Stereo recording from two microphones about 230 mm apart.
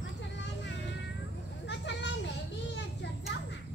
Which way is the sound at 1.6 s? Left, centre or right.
Left.